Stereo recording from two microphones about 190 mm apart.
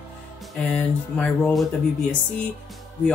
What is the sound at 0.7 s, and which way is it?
Speech, 5° left (ahead or behind).